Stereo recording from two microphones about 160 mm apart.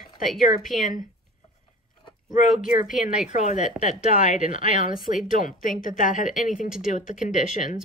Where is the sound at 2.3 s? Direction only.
55° left (ahead or behind).